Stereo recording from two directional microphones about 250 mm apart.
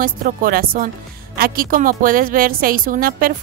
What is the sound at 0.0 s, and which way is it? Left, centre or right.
A woman's voice, right.